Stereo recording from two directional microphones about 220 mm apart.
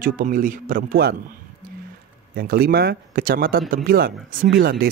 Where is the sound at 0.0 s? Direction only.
40° right (ahead or behind).